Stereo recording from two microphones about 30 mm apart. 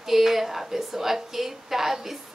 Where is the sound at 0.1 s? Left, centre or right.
Centre.